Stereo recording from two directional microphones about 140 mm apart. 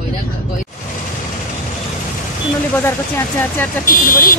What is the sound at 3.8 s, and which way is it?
Speech, 80° left.